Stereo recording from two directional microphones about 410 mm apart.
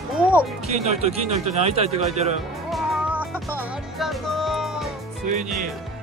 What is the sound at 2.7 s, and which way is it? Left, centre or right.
Music, centre.